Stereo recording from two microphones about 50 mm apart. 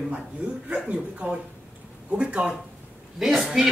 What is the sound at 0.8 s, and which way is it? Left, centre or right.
Speech, right.